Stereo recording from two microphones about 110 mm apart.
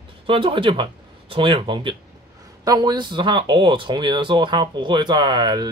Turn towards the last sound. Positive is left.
turn(degrees=-40)  # may be behind; listen again after turning